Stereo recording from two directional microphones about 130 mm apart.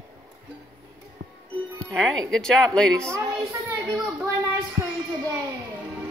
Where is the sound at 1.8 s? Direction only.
5° left (ahead or behind).